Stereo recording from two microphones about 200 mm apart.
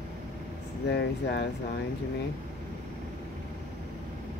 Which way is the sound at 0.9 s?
55° left (ahead or behind).